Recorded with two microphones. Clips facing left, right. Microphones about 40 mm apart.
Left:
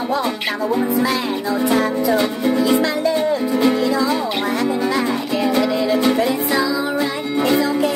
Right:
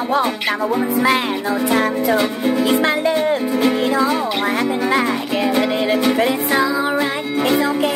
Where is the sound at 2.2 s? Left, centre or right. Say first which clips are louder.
Even; centre.